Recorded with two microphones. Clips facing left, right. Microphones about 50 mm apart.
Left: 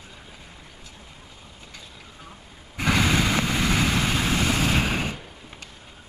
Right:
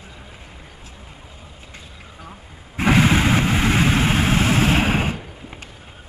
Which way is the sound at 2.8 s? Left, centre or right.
Right.